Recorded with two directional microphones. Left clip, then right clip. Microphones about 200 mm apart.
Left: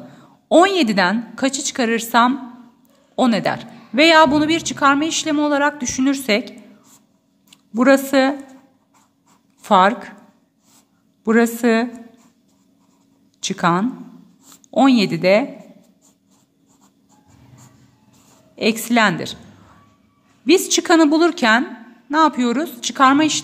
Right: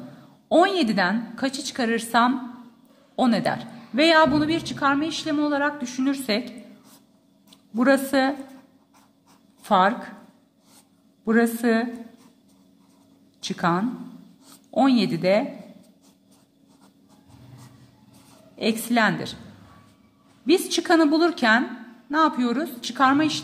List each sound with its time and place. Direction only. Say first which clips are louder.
0.5 s a woman's voice: left 6 dB; 25° left (ahead or behind)
7.5 s a woman's voice: left 6 dB; 25° left (ahead or behind)
9.6 s speech: left 6 dB; 25° left (ahead or behind)
11.2 s a woman's voice: left 5 dB; 25° left (ahead or behind)
13.4 s a woman's voice: left 6 dB; 25° left (ahead or behind)
18.6 s a woman's voice: left 6 dB; 25° left (ahead or behind)
20.4 s a woman's voice: left 6 dB; 25° left (ahead or behind)